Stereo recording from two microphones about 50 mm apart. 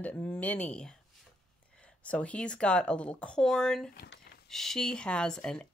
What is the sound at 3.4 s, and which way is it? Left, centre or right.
Speech, centre.